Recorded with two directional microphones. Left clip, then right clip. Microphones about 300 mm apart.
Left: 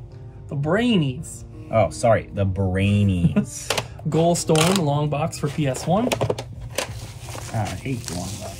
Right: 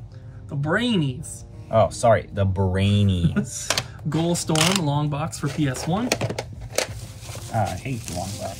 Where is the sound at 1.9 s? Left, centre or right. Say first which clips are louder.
Even; centre.